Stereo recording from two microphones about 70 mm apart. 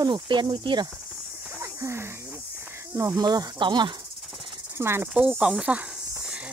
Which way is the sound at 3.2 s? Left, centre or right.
Right.